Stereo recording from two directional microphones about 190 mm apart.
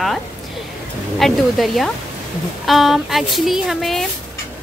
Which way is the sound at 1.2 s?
Centre (ahead or behind).